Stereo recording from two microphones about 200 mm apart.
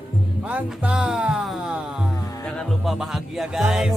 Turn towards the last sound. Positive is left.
turn(degrees=0)  # may be behind; listen again after turning